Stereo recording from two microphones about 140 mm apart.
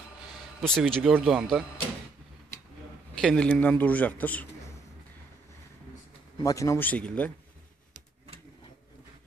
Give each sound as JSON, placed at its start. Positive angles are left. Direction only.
{"t": 0.6, "sound": "speech", "side_deg": 5}
{"t": 3.2, "sound": "a man's voice", "side_deg": 5}
{"t": 6.4, "sound": "speech", "side_deg": 20}
{"t": 6.9, "sound": "speech", "side_deg": 10}